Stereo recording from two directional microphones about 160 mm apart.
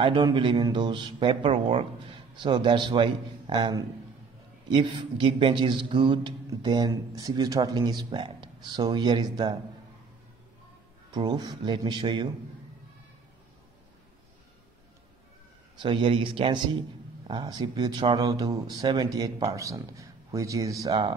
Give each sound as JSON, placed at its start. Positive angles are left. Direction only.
{"t": 0.0, "sound": "speech", "side_deg": -30}
{"t": 11.1, "sound": "speech", "side_deg": -25}
{"t": 15.8, "sound": "speech", "side_deg": -30}